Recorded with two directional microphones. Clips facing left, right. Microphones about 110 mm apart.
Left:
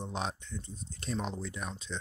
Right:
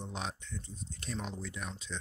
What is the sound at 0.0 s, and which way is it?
Speech, 35° left (ahead or behind).